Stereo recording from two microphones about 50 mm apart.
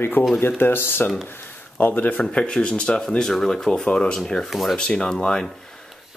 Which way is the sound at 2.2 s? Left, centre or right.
Centre.